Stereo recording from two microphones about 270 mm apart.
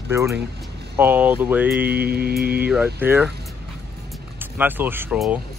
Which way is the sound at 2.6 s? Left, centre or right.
Centre.